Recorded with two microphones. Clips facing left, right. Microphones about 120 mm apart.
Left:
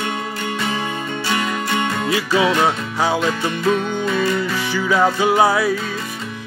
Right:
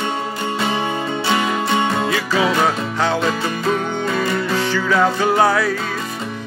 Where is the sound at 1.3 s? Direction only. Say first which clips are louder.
Right 3 dB; 25° right (ahead or behind).